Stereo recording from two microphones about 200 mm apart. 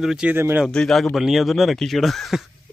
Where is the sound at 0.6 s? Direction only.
Centre (ahead or behind).